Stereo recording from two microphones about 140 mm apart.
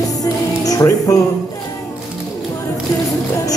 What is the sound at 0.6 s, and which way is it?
Speech, 25° left (ahead or behind).